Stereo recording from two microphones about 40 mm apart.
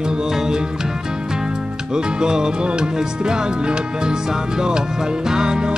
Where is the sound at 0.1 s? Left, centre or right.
Centre.